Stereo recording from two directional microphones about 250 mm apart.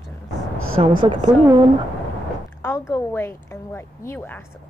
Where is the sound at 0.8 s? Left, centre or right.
Right.